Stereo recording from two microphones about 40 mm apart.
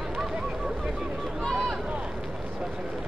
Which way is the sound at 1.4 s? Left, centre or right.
Centre.